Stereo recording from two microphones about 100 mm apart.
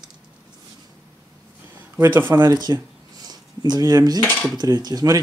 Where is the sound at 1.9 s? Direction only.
20° right (ahead or behind).